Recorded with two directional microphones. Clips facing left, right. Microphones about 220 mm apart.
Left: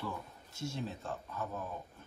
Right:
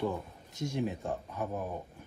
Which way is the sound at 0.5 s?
15° right (ahead or behind).